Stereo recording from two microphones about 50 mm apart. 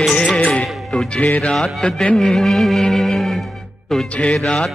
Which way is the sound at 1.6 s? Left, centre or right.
Centre.